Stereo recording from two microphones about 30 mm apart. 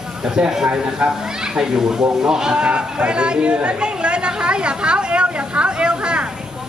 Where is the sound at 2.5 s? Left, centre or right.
Right.